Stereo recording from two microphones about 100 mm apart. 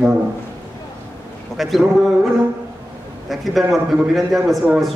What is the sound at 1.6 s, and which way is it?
Speech, centre (ahead or behind).